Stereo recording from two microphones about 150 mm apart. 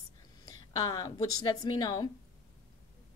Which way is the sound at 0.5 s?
25° left (ahead or behind).